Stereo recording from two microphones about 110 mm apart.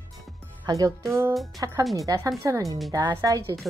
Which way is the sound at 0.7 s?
30° right (ahead or behind).